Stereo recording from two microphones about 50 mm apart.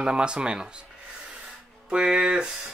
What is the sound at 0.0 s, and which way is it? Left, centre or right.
Speech, centre.